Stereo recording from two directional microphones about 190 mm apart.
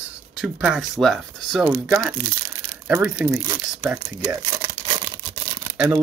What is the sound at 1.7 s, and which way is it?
Speech, 10° right (ahead or behind).